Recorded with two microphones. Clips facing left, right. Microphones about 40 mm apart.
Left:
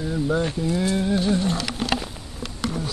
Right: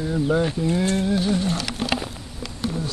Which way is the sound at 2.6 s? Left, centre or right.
Left.